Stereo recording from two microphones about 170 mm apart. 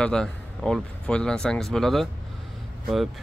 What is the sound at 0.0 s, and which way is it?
Speech, 5° left (ahead or behind).